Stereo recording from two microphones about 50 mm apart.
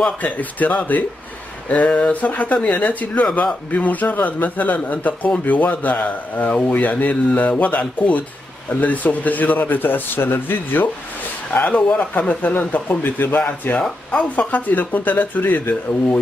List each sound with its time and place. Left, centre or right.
0.2 s speech: left
2.2 s speech: left
12.5 s speech: left
14.1 s speech: left